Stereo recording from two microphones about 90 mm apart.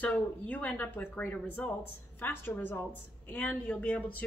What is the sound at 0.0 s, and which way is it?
A woman's voice, 15° left (ahead or behind).